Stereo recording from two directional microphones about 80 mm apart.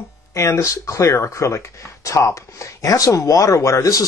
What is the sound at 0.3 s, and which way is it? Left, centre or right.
Speech, left.